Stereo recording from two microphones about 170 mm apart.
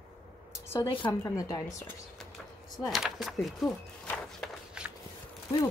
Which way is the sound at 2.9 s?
Centre (ahead or behind).